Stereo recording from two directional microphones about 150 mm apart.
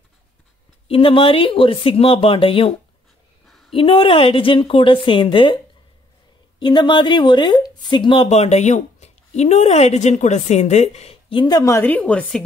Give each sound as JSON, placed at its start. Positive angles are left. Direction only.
{"t": 0.8, "sound": "speech", "side_deg": 40}
{"t": 3.7, "sound": "speech", "side_deg": 35}
{"t": 6.6, "sound": "speech", "side_deg": 30}